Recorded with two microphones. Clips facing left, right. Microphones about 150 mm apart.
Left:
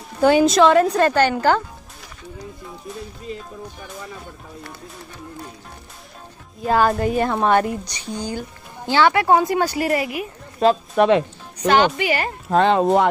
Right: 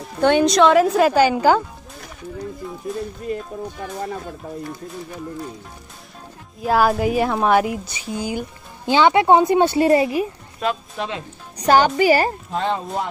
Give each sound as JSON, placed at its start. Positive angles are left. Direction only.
{"t": 0.2, "sound": "a woman's voice", "side_deg": 5}
{"t": 3.3, "sound": "speech", "side_deg": -50}
{"t": 6.6, "sound": "a woman's voice", "side_deg": -5}
{"t": 10.6, "sound": "speech", "side_deg": 30}
{"t": 11.0, "sound": "speech", "side_deg": 65}
{"t": 11.5, "sound": "speech", "side_deg": -35}
{"t": 12.4, "sound": "speech", "side_deg": 75}